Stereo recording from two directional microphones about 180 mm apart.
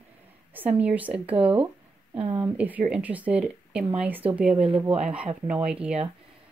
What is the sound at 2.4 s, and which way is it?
A woman's voice, 10° right (ahead or behind).